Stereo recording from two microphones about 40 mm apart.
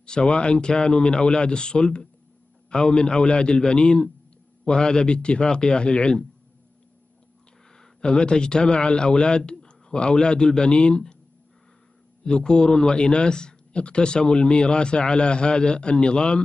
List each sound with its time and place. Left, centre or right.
0.0 s speech: left
7.7 s a man's voice: centre
12.3 s speech: left